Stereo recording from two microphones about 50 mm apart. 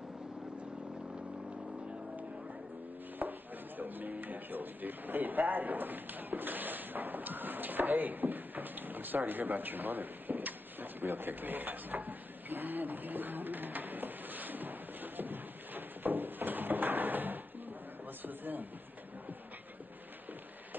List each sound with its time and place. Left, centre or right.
3.2 s chopping: right
18.2 s a man's voice: right